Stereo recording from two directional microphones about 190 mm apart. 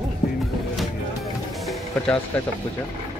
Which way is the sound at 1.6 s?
Centre (ahead or behind).